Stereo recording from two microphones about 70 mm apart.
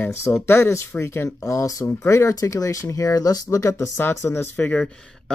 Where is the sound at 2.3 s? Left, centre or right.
Left.